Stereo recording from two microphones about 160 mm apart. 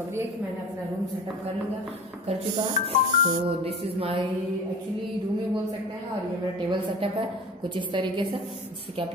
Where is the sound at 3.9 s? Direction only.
35° right (ahead or behind).